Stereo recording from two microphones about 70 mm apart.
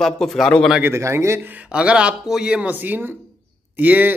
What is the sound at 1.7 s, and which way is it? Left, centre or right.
Speech, centre.